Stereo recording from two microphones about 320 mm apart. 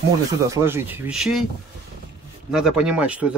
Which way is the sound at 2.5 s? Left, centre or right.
Centre.